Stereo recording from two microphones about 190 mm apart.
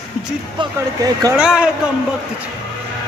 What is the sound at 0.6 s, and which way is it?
Speech, 20° right (ahead or behind).